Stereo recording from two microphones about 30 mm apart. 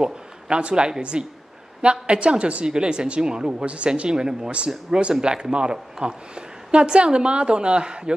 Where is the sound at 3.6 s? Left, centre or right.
Right.